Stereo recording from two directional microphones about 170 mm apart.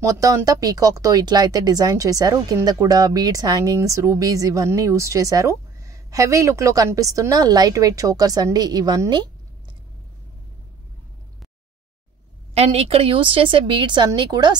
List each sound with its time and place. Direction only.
0.0 s speech: 20° right (ahead or behind)
12.5 s a woman's voice: 35° right (ahead or behind)